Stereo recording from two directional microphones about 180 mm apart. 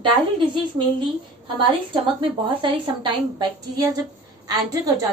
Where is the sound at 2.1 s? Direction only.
25° right (ahead or behind).